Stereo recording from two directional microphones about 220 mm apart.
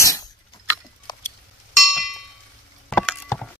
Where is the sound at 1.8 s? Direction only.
Centre (ahead or behind).